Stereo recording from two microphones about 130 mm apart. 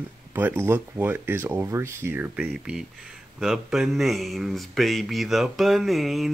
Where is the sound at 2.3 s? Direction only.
5° right (ahead or behind).